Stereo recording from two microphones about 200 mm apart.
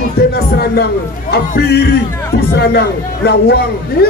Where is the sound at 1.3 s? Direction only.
55° left (ahead or behind).